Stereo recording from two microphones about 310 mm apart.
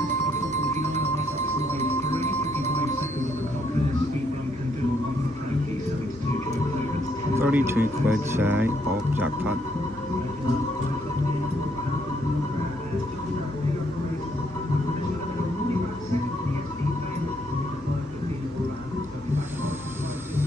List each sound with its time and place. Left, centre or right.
0.9 s music: right
7.3 s speech: centre